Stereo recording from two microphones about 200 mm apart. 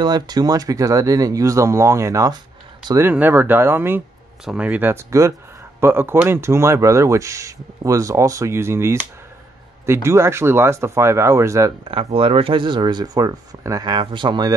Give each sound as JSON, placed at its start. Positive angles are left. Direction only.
{"t": 0.0, "sound": "speech", "side_deg": -20}
{"t": 11.9, "sound": "speech", "side_deg": -25}